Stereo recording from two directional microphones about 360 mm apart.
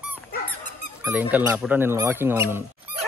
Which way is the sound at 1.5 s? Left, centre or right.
Centre.